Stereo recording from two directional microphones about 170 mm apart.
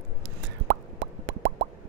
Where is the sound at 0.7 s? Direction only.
90° right.